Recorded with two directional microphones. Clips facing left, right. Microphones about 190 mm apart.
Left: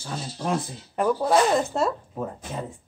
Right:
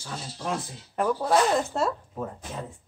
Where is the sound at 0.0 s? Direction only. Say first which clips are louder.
Left 4 dB; 25° left (ahead or behind).